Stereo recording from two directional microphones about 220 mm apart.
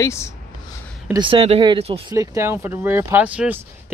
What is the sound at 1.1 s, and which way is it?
Speech, 25° right (ahead or behind).